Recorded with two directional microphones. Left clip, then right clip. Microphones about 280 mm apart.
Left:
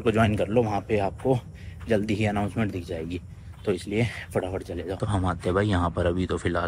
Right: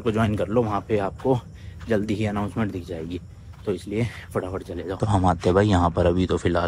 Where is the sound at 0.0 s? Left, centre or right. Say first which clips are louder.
Left 1 dB; centre.